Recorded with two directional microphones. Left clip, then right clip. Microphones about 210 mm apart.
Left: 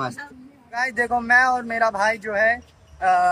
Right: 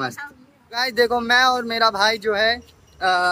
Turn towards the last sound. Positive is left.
turn(degrees=-5)  # may be behind; listen again after turning